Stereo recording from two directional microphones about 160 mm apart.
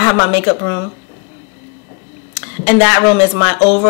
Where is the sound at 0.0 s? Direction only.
15° left (ahead or behind).